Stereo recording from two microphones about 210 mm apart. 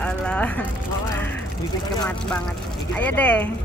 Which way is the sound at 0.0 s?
5° left (ahead or behind).